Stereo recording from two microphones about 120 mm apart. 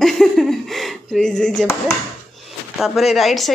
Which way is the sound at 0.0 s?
5° left (ahead or behind).